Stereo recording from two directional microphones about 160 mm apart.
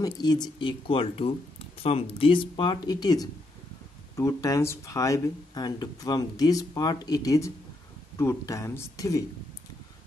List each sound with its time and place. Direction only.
0.0 s speech: 25° left (ahead or behind)